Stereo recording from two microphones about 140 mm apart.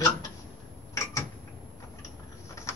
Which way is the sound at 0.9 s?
20° left (ahead or behind).